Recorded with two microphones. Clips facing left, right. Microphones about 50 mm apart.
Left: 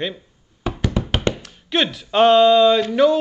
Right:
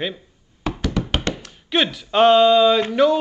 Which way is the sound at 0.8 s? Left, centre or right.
Centre.